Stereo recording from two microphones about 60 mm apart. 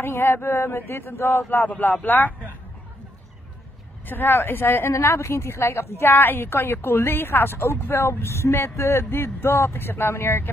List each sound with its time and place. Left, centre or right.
0.0 s speech: left
4.0 s speech: left
4.9 s a woman's voice: left